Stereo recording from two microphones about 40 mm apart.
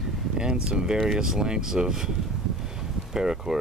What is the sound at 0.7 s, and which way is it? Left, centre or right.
Speech, right.